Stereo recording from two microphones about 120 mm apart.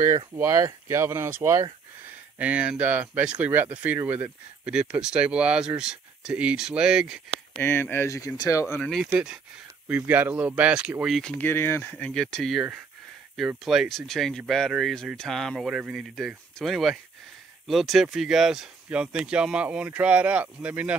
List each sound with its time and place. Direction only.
0.4 s speech: 25° right (ahead or behind); by 7.2 s 5° right (ahead or behind)
7.6 s speech: 20° left (ahead or behind)
8.8 s speech: centre (ahead or behind)
9.8 s speech: 15° right (ahead or behind)
11.4 s speech: 15° left (ahead or behind)
13.7 s speech: centre (ahead or behind)